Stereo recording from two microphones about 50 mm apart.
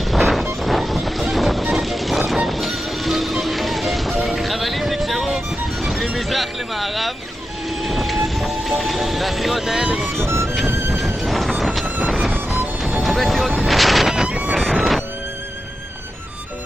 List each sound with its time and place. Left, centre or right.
0.1 s music: centre
7.8 s vehicle: centre
9.9 s music: centre
10.2 s music: right
11.2 s a sound: centre
12.8 s music: centre